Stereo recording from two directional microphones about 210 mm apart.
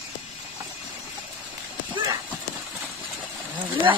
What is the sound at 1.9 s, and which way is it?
Clip-clop, 20° right (ahead or behind).